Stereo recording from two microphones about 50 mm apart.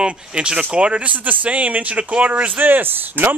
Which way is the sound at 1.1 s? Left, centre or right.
Right.